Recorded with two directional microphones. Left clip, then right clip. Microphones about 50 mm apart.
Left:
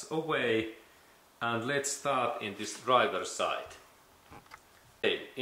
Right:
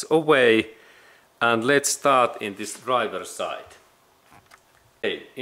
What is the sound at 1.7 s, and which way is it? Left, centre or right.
Speech, right.